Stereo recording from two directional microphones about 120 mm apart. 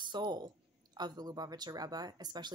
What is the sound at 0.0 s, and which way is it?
A woman's voice, 40° right (ahead or behind).